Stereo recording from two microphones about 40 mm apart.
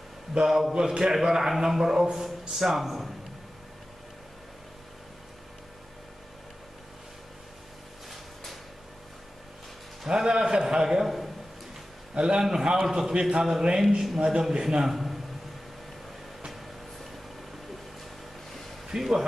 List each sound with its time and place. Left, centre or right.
0.5 s speech: centre
0.7 s a man's voice: centre
10.0 s a man's voice: centre
11.1 s a sound: centre
12.1 s a man's voice: right
18.9 s speech: centre